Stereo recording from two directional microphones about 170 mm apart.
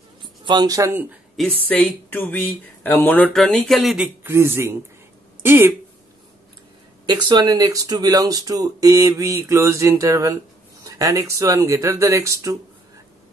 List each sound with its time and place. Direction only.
0.2 s speech: 25° right (ahead or behind)
1.3 s speech: 5° left (ahead or behind)
4.2 s speech: 15° right (ahead or behind)
7.1 s speech: 25° right (ahead or behind)